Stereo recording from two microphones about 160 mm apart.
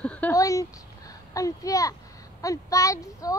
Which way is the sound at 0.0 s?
10° left (ahead or behind).